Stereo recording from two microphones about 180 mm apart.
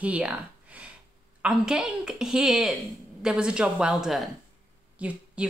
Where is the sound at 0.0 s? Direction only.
5° right (ahead or behind).